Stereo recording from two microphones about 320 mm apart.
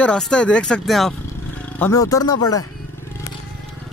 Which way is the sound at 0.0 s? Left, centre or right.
Centre.